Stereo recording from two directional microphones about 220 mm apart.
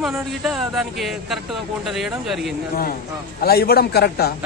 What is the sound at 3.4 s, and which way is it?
Speech, 45° left (ahead or behind).